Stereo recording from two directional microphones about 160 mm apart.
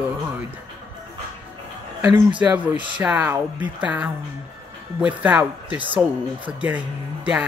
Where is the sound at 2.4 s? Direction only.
10° right (ahead or behind).